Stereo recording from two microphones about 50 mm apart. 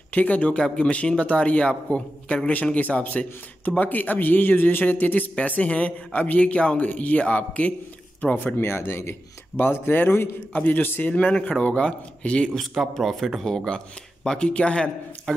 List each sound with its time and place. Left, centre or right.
0.1 s speech: left
0.5 s a man's voice: centre
8.5 s speech: left
9.6 s a man's voice: left
11.1 s a man's voice: left
12.5 s a man's voice: centre